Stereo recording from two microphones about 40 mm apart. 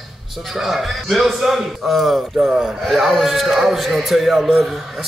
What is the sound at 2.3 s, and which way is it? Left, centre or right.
A man's voice, centre.